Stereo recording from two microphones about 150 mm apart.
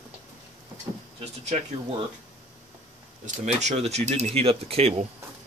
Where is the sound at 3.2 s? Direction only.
50° right (ahead or behind).